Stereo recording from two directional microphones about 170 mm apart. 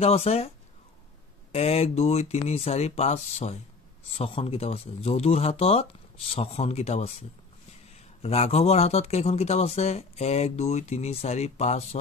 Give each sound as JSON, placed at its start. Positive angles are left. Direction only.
{"t": 0.0, "sound": "speech", "side_deg": 35}
{"t": 1.5, "sound": "speech", "side_deg": 40}